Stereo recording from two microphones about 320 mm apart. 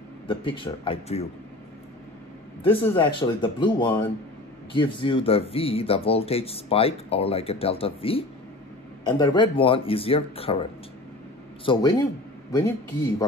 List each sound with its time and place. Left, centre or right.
0.3 s speech: centre
2.6 s speech: centre
11.6 s a man's voice: centre